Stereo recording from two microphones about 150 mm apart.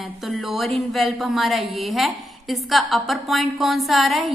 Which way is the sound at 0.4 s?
Centre (ahead or behind).